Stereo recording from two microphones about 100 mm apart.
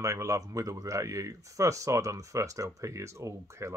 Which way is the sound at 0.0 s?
30° right (ahead or behind).